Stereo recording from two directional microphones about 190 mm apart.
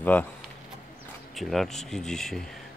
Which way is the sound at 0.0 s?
10° left (ahead or behind).